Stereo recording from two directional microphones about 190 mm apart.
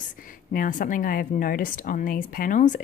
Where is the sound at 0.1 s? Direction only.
45° left (ahead or behind).